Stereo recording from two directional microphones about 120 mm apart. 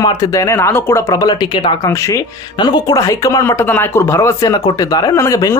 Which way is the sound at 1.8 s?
25° left (ahead or behind).